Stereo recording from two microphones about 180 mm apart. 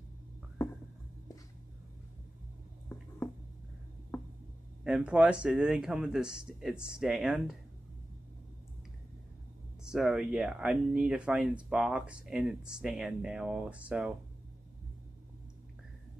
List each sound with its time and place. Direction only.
4.1 s a sound: 15° left (ahead or behind)
4.8 s speech: 5° right (ahead or behind)
9.8 s speech: 5° right (ahead or behind)